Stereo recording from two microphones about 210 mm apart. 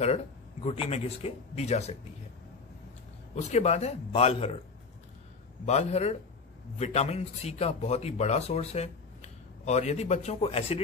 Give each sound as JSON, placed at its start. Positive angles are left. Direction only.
{"t": 0.0, "sound": "speech", "side_deg": 30}
{"t": 3.5, "sound": "speech", "side_deg": 30}
{"t": 5.7, "sound": "speech", "side_deg": 30}